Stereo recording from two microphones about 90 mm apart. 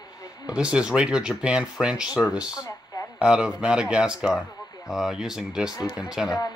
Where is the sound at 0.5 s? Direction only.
10° right (ahead or behind).